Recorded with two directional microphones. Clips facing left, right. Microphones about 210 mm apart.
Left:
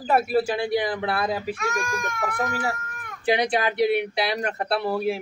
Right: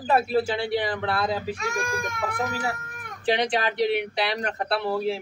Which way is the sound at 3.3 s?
10° left (ahead or behind).